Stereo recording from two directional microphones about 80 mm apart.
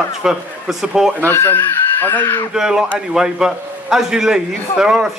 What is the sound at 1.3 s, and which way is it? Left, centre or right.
Speech, left.